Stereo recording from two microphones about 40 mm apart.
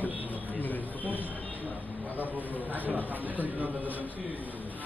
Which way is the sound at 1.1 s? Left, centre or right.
Right.